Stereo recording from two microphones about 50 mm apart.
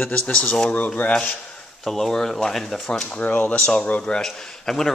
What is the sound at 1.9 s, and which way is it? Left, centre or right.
Speech, centre.